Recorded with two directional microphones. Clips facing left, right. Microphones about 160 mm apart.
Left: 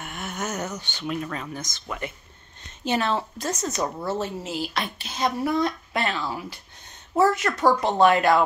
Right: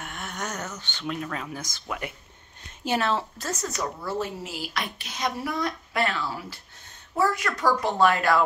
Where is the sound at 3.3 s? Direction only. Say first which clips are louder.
Left 4 dB; 20° left (ahead or behind).